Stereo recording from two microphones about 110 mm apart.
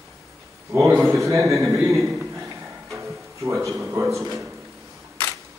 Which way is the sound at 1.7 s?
Centre (ahead or behind).